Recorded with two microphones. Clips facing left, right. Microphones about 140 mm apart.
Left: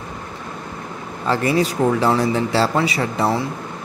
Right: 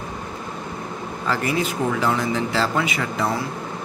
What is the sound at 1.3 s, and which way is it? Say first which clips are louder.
Speech: left 5 dB; 30° left (ahead or behind).